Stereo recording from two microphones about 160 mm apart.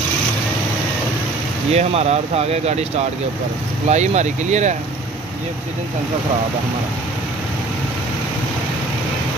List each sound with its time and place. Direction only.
1.7 s speech: 40° right (ahead or behind)
3.9 s speech: 45° right (ahead or behind)